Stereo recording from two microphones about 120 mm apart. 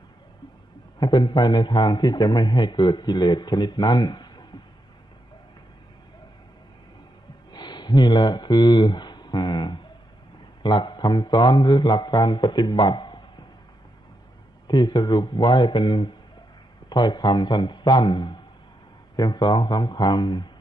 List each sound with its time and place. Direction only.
0.9 s a man's voice: 35° left (ahead or behind)
7.5 s a sound: 40° left (ahead or behind)
10.6 s a man's voice: 40° left (ahead or behind)
14.7 s a man's voice: 35° left (ahead or behind)